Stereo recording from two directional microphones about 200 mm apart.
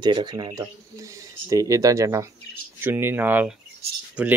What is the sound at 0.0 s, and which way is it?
Speech, 20° right (ahead or behind).